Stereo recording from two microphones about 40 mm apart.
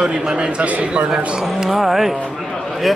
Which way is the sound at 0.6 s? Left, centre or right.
Right.